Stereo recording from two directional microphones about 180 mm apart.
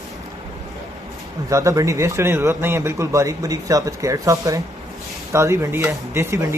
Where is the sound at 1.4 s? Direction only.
20° right (ahead or behind).